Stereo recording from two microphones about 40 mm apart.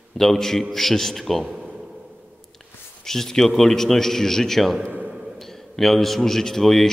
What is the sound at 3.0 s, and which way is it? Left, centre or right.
A man's voice, centre.